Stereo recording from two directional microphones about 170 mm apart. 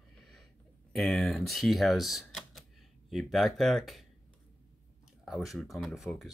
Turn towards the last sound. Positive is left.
turn(degrees=0)  # may be behind; listen again after turning